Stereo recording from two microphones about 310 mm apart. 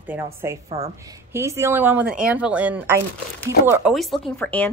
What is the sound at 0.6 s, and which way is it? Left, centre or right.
A woman's voice, centre.